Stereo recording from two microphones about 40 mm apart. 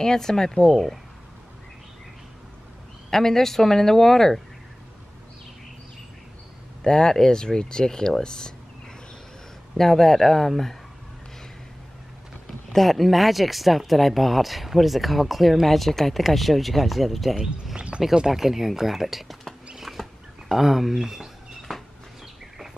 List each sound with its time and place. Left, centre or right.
0.0 s speech: centre
3.1 s speech: centre
6.8 s speech: centre
9.8 s speech: centre
12.7 s speech: centre
17.7 s speech: right
18.1 s speech: centre
19.8 s a sound: centre
21.5 s a sound: centre